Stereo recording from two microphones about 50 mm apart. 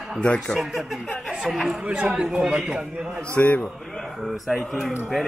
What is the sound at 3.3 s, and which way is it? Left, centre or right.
Speech, left.